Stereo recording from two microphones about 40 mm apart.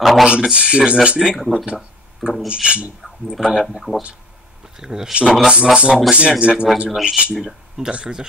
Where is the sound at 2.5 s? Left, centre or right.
Right.